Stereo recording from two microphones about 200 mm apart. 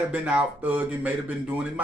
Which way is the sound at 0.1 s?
5° right (ahead or behind).